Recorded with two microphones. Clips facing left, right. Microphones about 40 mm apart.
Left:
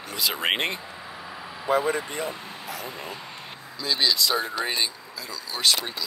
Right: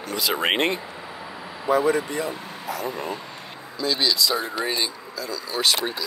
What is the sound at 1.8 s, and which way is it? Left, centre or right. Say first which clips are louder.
Speech: right 8 dB; right.